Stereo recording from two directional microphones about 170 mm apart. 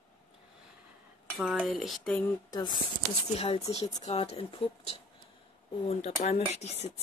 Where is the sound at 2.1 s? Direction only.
20° left (ahead or behind).